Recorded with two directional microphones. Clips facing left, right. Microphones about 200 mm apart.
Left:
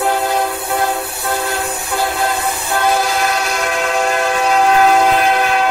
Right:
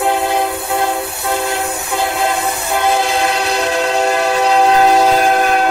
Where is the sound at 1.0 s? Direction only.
25° right (ahead or behind).